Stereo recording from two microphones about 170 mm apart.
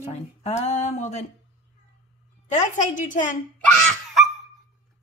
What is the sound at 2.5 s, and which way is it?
Speech, 45° left (ahead or behind).